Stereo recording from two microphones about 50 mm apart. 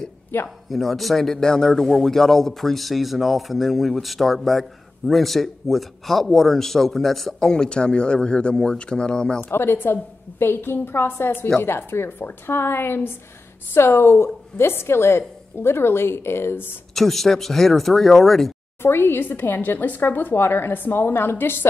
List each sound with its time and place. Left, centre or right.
0.7 s a man's voice: centre
9.4 s a woman's voice: left
16.9 s a man's voice: centre
18.8 s a woman's voice: left